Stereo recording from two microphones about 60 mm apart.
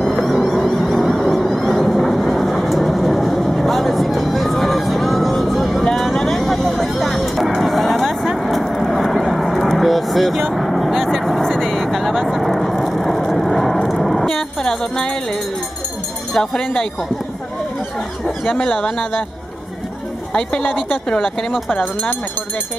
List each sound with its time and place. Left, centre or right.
0.0 s vehicle: centre
16.3 s speech: centre
18.5 s speech: left
21.6 s speech: left